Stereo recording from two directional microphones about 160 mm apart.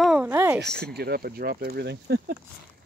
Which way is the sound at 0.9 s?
80° right.